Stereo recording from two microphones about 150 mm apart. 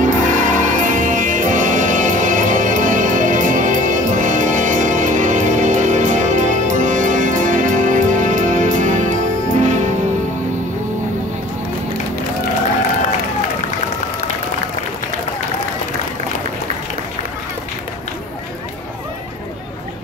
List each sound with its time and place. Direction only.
0.0 s music: 60° right (ahead or behind)